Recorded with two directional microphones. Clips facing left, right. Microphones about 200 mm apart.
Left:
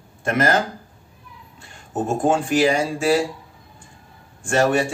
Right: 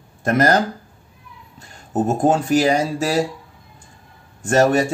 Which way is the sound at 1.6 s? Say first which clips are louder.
Right 4 dB; 40° right (ahead or behind).